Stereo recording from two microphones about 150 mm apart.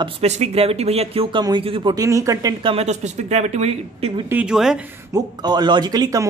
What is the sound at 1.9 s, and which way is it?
Speech, 20° right (ahead or behind).